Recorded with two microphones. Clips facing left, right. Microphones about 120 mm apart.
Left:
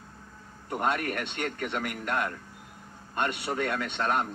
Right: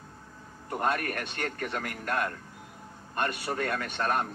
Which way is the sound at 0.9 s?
45° right (ahead or behind).